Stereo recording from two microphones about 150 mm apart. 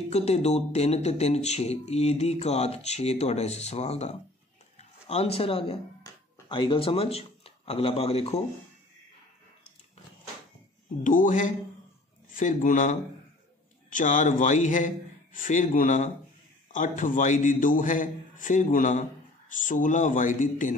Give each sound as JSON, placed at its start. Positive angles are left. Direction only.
{"t": 0.1, "sound": "speech", "side_deg": 45}
{"t": 11.1, "sound": "a man's voice", "side_deg": 60}